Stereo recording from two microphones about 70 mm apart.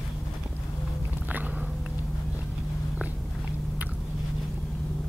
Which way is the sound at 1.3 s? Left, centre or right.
Right.